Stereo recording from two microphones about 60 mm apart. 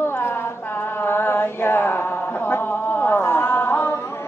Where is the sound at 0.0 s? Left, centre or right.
Left.